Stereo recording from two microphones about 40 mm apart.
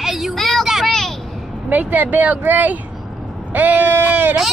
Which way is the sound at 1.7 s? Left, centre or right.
Right.